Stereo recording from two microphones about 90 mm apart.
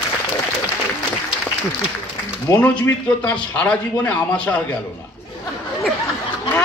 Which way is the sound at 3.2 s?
10° left (ahead or behind).